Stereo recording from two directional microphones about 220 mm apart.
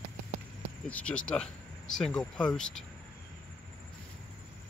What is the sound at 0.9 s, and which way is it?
Speech, 5° left (ahead or behind).